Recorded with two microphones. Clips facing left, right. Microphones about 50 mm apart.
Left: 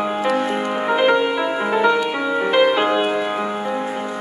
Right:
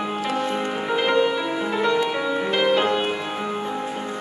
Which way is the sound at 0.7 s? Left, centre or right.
Left.